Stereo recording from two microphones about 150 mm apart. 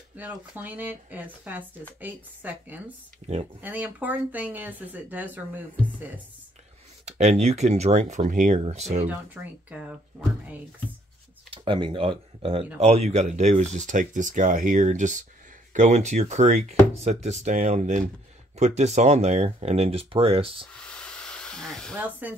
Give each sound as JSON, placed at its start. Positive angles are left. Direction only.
{"t": 0.2, "sound": "speech", "side_deg": -10}
{"t": 7.1, "sound": "speech", "side_deg": -45}
{"t": 9.0, "sound": "speech", "side_deg": -10}
{"t": 11.5, "sound": "speech", "side_deg": -35}
{"t": 20.7, "sound": "hiss", "side_deg": 5}
{"t": 21.9, "sound": "speech", "side_deg": -10}